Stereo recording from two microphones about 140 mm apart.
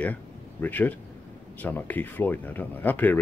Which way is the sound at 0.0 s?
10° left (ahead or behind).